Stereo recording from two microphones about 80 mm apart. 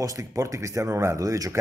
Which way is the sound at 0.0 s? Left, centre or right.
Right.